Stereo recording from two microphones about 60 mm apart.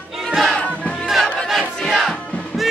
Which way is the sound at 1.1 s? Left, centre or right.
Centre.